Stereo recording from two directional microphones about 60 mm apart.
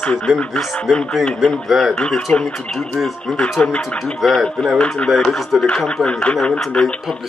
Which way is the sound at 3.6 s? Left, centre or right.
Centre.